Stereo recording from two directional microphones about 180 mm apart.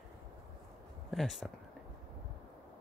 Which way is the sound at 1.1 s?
Centre (ahead or behind).